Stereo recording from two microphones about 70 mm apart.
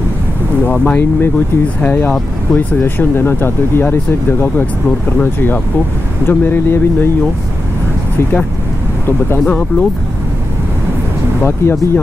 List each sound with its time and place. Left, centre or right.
0.7 s speech: left
5.2 s speech: left
9.5 s speech: centre
11.4 s speech: left